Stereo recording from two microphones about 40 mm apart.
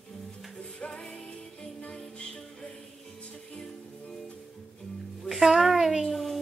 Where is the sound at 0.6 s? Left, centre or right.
Left.